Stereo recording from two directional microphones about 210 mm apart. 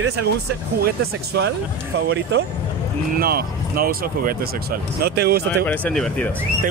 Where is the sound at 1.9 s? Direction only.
55° right (ahead or behind).